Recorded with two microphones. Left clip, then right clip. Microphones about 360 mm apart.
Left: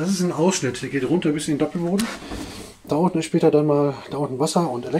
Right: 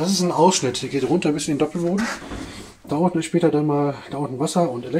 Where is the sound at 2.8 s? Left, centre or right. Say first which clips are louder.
Even; centre.